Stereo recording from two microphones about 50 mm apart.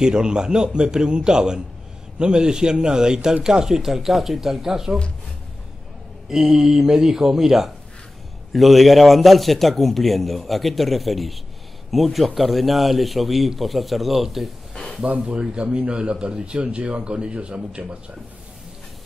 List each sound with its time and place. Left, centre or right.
0.0 s speech: centre
6.2 s a man's voice: centre
15.0 s speech: right